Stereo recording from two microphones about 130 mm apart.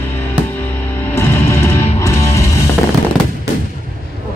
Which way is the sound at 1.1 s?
20° left (ahead or behind).